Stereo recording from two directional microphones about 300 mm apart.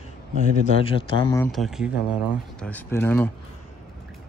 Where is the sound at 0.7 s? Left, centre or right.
Centre.